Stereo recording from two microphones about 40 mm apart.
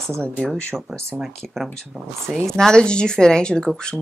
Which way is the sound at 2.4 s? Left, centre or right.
Centre.